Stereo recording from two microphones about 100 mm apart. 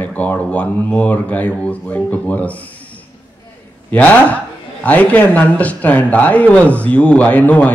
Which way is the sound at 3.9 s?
15° left (ahead or behind).